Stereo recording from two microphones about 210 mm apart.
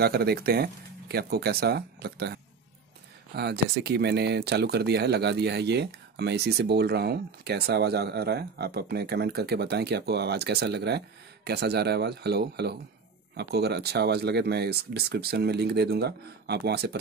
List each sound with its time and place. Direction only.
0.0 s speech: 50° right (ahead or behind)